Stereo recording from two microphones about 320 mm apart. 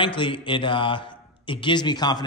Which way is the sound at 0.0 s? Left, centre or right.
Centre.